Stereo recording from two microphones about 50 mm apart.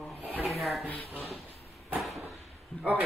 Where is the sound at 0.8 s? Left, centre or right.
Left.